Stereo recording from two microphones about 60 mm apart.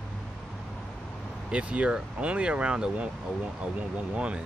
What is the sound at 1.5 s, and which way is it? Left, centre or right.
Speech, centre.